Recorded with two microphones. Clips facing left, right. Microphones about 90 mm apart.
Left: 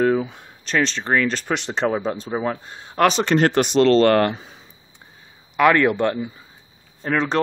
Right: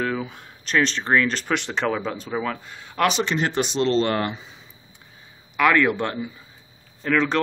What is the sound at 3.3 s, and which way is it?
Speech, 60° left (ahead or behind).